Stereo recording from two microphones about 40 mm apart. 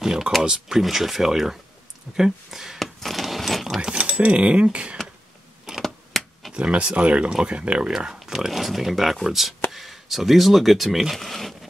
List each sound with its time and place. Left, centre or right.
0.0 s speech: centre
2.8 s a sound: centre
3.8 s speech: right
5.8 s power windows: centre
6.5 s speech: right; by 11.1 s centre
11.1 s speech: centre